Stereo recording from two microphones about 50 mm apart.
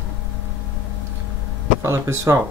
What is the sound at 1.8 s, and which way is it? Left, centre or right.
Speech, right.